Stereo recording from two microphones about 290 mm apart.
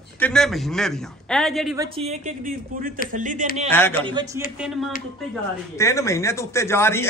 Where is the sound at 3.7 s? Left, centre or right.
Centre.